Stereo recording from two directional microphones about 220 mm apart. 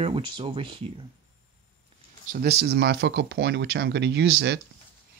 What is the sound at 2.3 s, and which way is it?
Speech, 45° right (ahead or behind).